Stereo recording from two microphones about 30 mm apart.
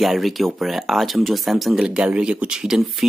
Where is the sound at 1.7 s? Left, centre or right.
Right.